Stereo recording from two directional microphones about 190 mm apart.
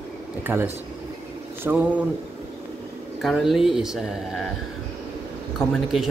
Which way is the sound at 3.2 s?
Centre (ahead or behind).